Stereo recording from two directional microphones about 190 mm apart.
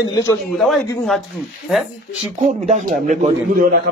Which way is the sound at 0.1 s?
15° left (ahead or behind).